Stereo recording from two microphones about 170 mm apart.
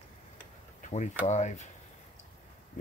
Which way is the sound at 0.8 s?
45° left (ahead or behind).